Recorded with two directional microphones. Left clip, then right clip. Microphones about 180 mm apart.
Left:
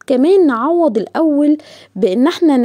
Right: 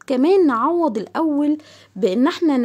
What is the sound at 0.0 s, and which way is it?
Speech, 25° left (ahead or behind).